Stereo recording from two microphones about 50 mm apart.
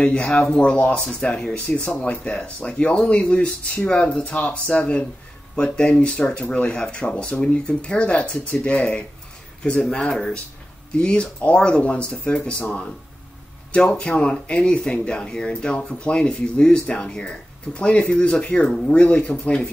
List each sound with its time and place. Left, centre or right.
0.0 s speech: left
10.9 s speech: centre
13.7 s speech: left